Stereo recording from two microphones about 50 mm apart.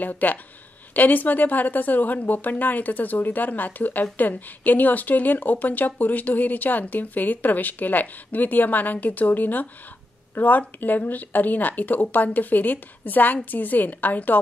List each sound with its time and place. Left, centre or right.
0.0 s a woman's voice: left